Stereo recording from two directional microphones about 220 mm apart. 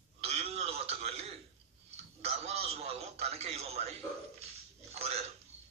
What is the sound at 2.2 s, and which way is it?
A man's voice, 30° right (ahead or behind).